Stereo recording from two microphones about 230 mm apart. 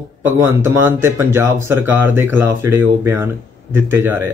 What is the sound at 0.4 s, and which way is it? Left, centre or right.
Speech, centre.